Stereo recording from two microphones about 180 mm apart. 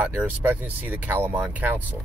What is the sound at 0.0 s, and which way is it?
Speech, 10° right (ahead or behind).